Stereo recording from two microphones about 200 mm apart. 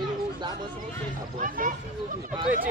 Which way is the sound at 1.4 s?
40° right (ahead or behind).